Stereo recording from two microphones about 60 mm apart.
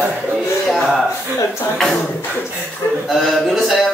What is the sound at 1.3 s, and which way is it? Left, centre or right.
Speech, left.